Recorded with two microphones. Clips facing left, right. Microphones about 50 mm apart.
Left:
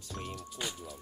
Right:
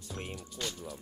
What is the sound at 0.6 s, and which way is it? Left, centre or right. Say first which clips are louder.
Speech: right 1 dB; centre.